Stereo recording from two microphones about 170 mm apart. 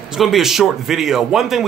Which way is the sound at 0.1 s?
Centre (ahead or behind).